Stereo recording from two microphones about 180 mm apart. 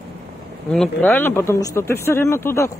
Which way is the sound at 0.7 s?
5° left (ahead or behind).